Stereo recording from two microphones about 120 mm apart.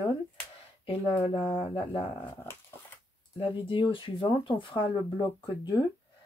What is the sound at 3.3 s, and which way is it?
Speech, 45° left (ahead or behind).